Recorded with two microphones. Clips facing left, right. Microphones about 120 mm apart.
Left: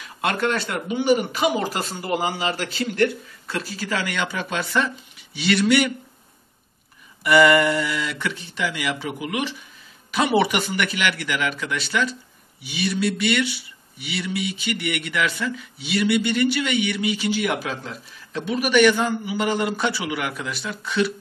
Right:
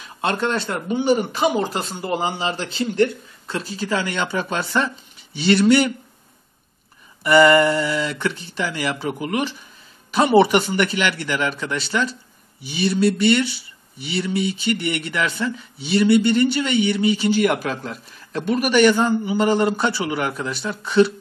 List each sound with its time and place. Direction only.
0.0 s a man's voice: 30° right (ahead or behind)
7.2 s speech: 35° right (ahead or behind)
17.4 s speech: 50° right (ahead or behind)